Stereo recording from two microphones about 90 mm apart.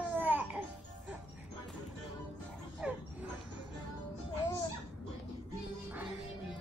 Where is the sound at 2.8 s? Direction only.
10° right (ahead or behind).